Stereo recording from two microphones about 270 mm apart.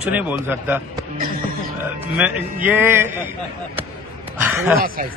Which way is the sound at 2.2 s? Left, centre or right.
Centre.